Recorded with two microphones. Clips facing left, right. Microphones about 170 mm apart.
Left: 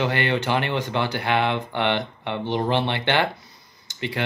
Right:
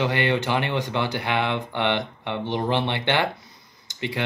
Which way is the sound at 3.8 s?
20° right (ahead or behind).